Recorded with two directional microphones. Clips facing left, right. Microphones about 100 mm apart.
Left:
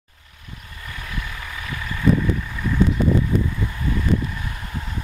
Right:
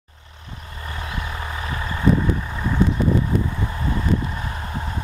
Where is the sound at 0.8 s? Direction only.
35° right (ahead or behind).